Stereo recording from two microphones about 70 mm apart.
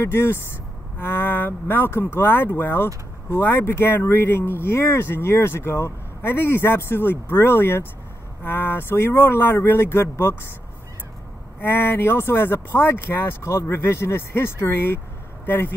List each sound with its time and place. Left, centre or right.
0.0 s speech: left
11.6 s speech: left